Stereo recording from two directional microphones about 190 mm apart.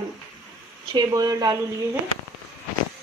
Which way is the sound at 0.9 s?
20° right (ahead or behind).